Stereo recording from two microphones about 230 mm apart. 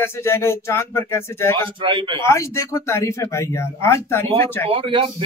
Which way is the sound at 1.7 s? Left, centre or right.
Right.